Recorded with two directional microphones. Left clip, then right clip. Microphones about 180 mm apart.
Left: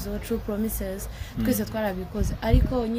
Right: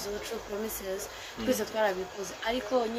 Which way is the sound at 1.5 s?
50° left (ahead or behind).